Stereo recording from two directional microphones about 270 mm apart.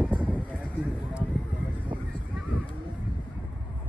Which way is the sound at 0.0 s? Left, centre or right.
Centre.